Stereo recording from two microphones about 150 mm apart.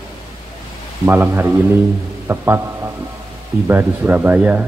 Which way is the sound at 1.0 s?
15° right (ahead or behind).